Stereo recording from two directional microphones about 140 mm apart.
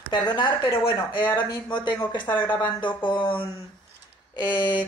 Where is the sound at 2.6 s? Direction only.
35° left (ahead or behind).